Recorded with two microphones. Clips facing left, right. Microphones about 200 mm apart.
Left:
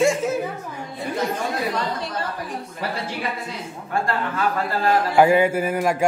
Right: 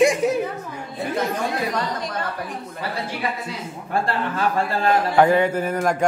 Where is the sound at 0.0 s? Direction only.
15° right (ahead or behind).